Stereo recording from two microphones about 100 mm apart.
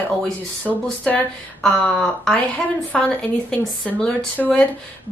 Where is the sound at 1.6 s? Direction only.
5° left (ahead or behind).